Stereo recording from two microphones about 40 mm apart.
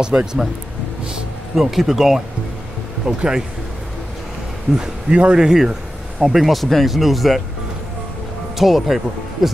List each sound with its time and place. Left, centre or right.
0.0 s speech: centre
1.5 s speech: centre
3.1 s speech: right
4.7 s speech: centre
6.2 s speech: centre
8.5 s speech: centre